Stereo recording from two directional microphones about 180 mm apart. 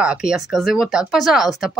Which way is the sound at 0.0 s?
5° right (ahead or behind).